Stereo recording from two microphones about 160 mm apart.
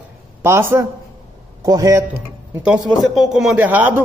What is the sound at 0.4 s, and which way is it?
A man's voice, 15° right (ahead or behind).